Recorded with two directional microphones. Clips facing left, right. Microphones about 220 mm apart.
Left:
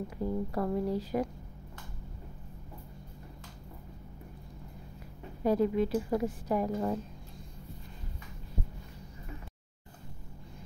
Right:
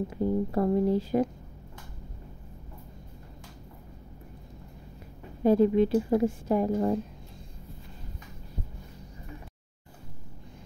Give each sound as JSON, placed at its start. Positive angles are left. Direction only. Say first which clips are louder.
{"t": 0.1, "sound": "a woman's voice", "louder": "right 6 dB", "side_deg": -25}
{"t": 5.4, "sound": "a woman's voice", "louder": "right 6 dB", "side_deg": -25}